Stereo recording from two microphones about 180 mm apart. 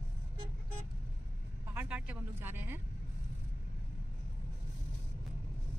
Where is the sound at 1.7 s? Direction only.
10° right (ahead or behind).